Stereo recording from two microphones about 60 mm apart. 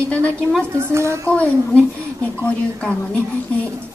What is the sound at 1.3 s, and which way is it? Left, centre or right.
Speech, left.